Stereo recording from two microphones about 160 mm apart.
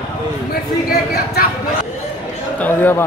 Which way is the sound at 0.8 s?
75° left (ahead or behind).